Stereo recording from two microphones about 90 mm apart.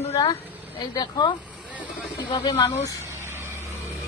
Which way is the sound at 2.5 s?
35° left (ahead or behind).